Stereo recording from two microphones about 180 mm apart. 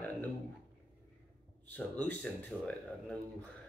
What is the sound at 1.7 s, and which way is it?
Speech, 10° left (ahead or behind).